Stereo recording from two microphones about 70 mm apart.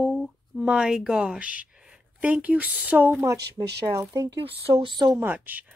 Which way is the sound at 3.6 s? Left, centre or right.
Right.